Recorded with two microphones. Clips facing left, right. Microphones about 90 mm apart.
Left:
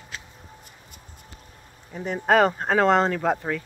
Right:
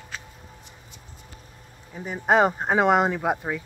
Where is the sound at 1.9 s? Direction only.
5° right (ahead or behind).